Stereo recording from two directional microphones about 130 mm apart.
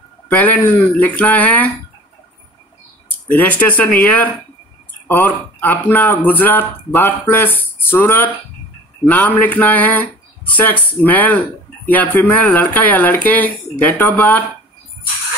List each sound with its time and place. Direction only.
0.4 s speech: 10° left (ahead or behind)
3.3 s speech: 10° left (ahead or behind)